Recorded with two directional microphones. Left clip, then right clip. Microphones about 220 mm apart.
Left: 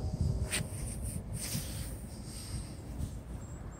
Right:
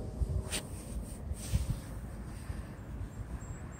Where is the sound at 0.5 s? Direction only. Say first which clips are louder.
Left 2 dB; 25° right (ahead or behind).